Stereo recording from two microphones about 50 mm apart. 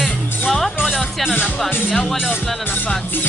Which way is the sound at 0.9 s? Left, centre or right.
Centre.